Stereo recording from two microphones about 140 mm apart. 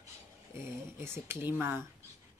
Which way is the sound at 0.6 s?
20° right (ahead or behind).